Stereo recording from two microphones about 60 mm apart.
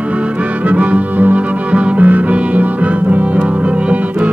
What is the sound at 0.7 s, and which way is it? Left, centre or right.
Music, right.